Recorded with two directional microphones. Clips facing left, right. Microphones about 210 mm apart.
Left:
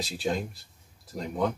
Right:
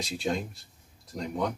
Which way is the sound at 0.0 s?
Centre (ahead or behind).